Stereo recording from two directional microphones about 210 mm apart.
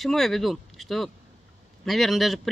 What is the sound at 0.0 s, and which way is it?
Speech, centre (ahead or behind).